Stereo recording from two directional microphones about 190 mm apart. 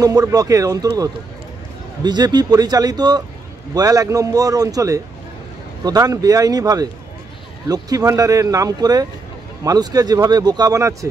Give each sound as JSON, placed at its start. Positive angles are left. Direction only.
{"t": 0.0, "sound": "speech", "side_deg": -20}